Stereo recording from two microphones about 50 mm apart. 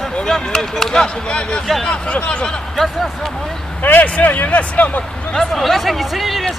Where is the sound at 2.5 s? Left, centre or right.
Centre.